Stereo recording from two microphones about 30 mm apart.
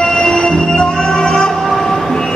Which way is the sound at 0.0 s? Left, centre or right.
Left.